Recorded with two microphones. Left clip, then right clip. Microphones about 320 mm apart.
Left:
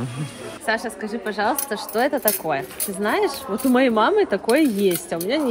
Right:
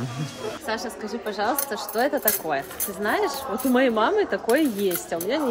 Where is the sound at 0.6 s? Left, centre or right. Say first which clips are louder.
Left 8 dB; left.